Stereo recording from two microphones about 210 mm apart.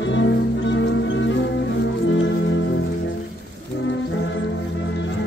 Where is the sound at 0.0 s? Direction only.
60° left (ahead or behind).